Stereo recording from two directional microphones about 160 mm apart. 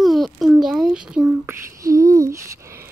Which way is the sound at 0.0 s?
Centre (ahead or behind).